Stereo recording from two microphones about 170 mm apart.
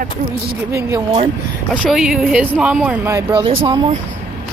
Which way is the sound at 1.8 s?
5° right (ahead or behind).